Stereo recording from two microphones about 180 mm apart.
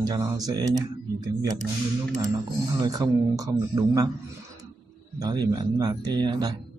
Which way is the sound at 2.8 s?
20° right (ahead or behind).